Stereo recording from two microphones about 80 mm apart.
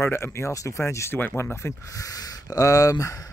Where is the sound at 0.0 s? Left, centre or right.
Left.